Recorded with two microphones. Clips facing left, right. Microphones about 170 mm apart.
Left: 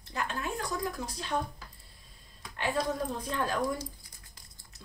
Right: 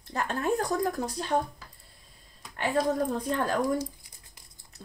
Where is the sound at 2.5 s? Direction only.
40° right (ahead or behind).